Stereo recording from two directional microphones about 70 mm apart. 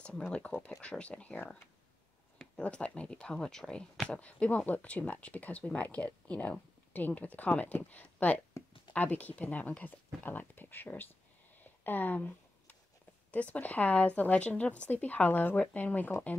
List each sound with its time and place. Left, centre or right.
0.3 s speech: centre
2.5 s speech: centre
11.8 s a sound: left
13.3 s speech: left